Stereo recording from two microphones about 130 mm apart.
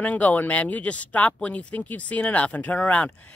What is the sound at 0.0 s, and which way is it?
A woman's voice, 10° left (ahead or behind).